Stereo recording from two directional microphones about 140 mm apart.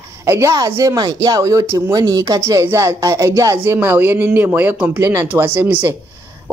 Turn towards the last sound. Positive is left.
turn(degrees=-15)  # may be behind; listen again after turning